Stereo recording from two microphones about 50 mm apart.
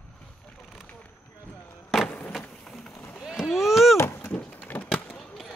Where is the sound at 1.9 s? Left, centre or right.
Centre.